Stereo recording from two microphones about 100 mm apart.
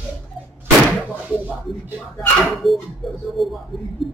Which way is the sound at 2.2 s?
Centre (ahead or behind).